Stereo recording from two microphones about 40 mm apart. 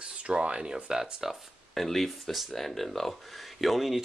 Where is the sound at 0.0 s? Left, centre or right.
Right.